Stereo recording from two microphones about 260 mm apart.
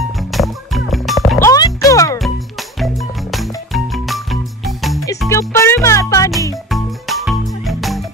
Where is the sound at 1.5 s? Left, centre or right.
Centre.